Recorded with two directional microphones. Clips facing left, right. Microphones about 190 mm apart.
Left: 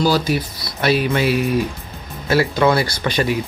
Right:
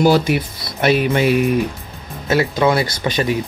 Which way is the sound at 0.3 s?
20° right (ahead or behind).